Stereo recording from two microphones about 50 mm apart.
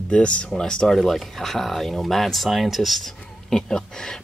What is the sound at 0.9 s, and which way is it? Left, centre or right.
Speech, centre.